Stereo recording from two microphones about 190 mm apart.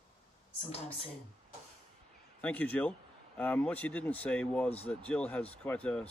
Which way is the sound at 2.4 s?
10° left (ahead or behind).